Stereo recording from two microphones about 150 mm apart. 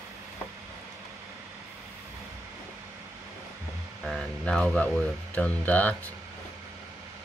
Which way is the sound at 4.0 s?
5° left (ahead or behind).